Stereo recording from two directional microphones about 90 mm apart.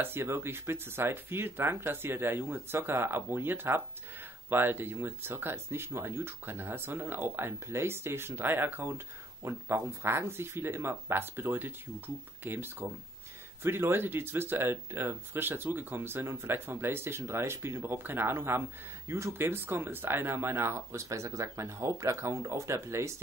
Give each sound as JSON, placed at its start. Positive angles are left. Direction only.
{"t": 0.0, "sound": "speech", "side_deg": -25}